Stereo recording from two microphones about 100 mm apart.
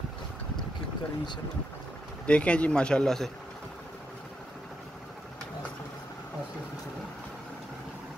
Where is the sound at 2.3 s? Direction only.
10° left (ahead or behind).